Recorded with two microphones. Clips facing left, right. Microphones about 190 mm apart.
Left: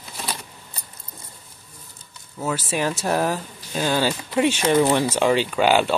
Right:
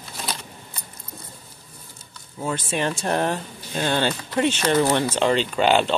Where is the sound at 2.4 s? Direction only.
5° left (ahead or behind).